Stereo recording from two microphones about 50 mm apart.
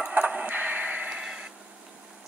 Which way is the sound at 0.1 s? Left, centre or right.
Right.